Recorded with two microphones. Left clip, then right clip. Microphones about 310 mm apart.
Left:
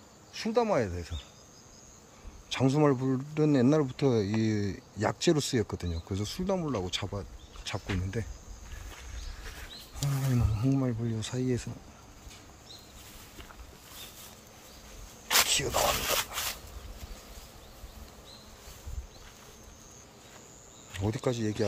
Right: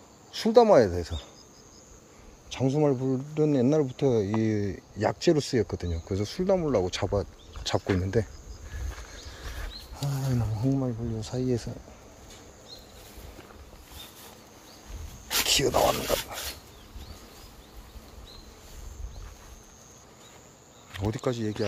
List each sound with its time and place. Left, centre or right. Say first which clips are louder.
0.3 s speech: right 9 dB; right
2.5 s speech: right 1 dB; centre
9.9 s speech: right 1 dB; centre
15.4 s a sound: right 5 dB; right
20.9 s speech: right 2 dB; centre